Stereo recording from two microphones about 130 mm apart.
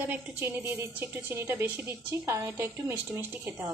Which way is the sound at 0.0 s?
15° right (ahead or behind).